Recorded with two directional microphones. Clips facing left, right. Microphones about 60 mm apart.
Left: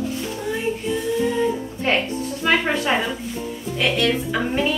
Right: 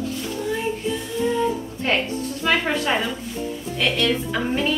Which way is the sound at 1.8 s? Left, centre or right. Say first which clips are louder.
Left 1 dB; centre.